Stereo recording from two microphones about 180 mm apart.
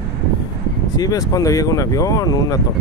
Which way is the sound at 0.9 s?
20° left (ahead or behind).